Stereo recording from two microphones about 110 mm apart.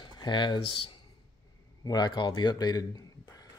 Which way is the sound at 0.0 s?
45° left (ahead or behind).